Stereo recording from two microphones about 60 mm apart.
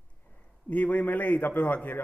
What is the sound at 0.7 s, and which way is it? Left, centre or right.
A man's voice, left.